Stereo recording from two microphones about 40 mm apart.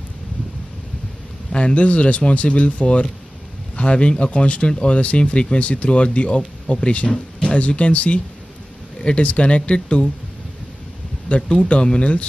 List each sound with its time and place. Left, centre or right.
1.5 s speech: left
11.2 s speech: left